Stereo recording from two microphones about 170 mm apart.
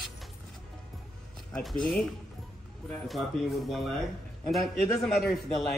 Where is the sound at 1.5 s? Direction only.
5° left (ahead or behind).